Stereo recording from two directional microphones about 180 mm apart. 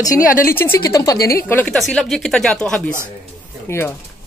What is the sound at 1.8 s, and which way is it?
Speech, centre (ahead or behind).